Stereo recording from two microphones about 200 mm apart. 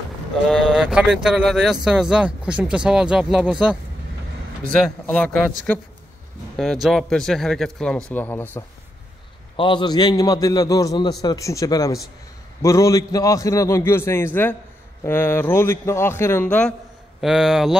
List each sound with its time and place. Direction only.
0.5 s speech: 5° right (ahead or behind)
4.7 s speech: 5° left (ahead or behind)
6.6 s a man's voice: centre (ahead or behind)
9.6 s a man's voice: 25° left (ahead or behind); by 17.7 s centre (ahead or behind)